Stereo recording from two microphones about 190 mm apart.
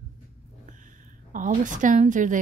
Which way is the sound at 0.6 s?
45° right (ahead or behind).